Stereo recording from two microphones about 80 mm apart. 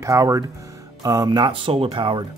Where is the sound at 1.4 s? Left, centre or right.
Right.